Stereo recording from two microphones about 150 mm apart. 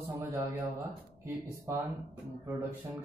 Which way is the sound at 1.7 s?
20° right (ahead or behind).